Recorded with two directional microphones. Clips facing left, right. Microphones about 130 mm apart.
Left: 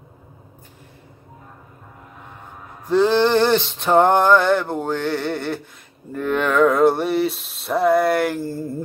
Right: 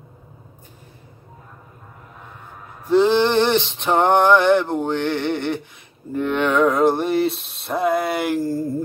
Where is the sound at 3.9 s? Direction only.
15° right (ahead or behind).